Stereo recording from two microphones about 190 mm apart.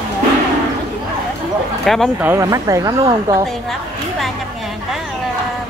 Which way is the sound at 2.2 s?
15° right (ahead or behind).